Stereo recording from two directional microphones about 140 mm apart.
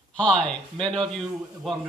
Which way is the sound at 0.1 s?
10° left (ahead or behind).